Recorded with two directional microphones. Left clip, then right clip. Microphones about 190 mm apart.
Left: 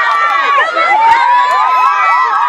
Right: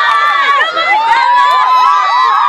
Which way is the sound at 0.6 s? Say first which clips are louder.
Left 1 dB; 30° left (ahead or behind).